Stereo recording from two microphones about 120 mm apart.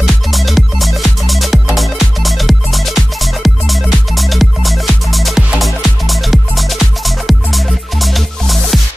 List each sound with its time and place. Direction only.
0.0 s music: centre (ahead or behind)